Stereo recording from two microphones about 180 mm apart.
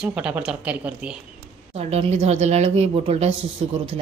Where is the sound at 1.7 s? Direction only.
35° right (ahead or behind).